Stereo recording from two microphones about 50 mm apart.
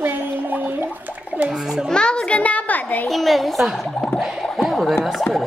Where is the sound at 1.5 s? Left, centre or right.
Centre.